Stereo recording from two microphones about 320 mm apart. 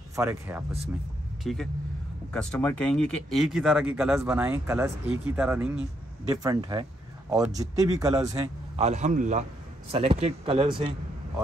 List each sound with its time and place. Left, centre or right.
0.1 s a man's voice: centre